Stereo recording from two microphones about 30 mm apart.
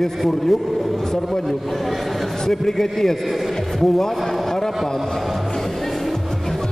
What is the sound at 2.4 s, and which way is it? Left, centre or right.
A man's voice, centre.